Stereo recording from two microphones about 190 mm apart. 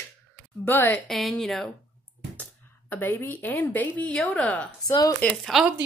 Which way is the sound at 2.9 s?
10° left (ahead or behind).